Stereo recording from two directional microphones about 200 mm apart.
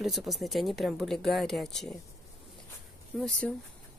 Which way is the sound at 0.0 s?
Centre (ahead or behind).